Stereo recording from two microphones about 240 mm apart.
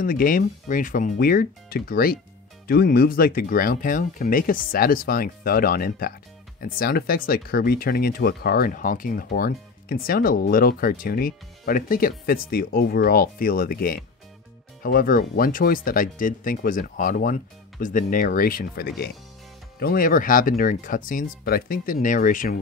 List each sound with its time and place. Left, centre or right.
0.0 s speech: left